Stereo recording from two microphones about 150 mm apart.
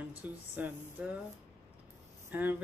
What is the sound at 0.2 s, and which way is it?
Speech, 10° right (ahead or behind).